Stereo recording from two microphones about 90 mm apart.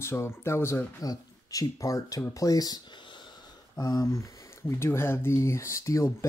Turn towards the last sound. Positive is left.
turn(degrees=35)  # may be behind; listen again after turning